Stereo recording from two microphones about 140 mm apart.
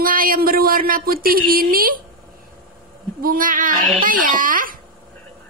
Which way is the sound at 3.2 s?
85° right.